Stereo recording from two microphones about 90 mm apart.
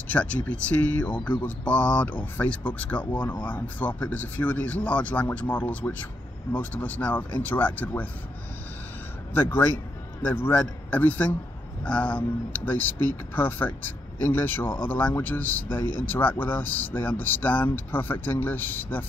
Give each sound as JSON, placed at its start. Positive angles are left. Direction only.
{"t": 0.1, "sound": "speech", "side_deg": 15}
{"t": 9.3, "sound": "speech", "side_deg": 25}